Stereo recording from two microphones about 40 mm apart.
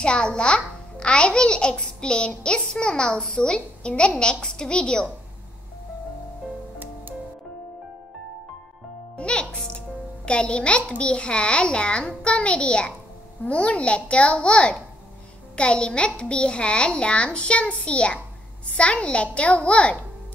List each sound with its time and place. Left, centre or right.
0.0 s a child's voice: left
9.2 s a child's voice: left